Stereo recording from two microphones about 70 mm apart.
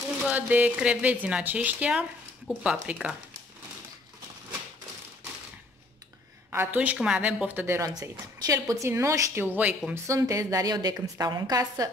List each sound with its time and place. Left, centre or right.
0.3 s a woman's voice: right
6.5 s a woman's voice: right
6.8 s a woman's voice: centre
8.0 s a woman's voice: right
8.8 s a woman's voice: right
9.3 s speech: right
9.6 s speech: centre
10.0 s a woman's voice: right